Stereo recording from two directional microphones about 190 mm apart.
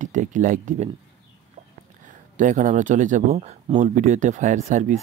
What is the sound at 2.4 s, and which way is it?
Speech, 40° right (ahead or behind).